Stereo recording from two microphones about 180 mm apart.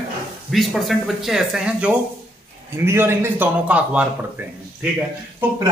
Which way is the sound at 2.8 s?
15° right (ahead or behind).